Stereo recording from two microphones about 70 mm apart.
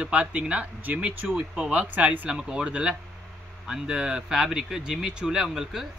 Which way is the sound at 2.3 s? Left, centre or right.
Centre.